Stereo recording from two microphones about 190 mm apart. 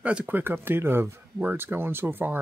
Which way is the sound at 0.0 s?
5° right (ahead or behind).